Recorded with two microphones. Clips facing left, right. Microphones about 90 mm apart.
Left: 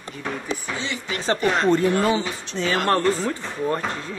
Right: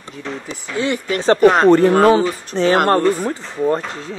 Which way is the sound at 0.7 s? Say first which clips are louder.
Right 9 dB; 55° right (ahead or behind).